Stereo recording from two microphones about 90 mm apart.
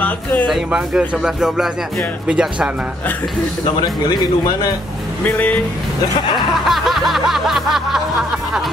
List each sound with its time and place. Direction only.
0.0 s speech: 20° left (ahead or behind)
0.5 s snicker: 5° right (ahead or behind)
2.2 s speech: 10° right (ahead or behind)
3.8 s speech: 50° left (ahead or behind)
5.2 s speech: 20° left (ahead or behind)
6.3 s snicker: centre (ahead or behind)